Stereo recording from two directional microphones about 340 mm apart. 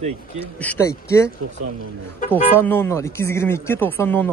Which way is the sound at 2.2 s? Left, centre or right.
Left.